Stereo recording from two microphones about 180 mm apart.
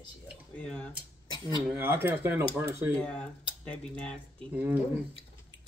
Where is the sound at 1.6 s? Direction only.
10° right (ahead or behind).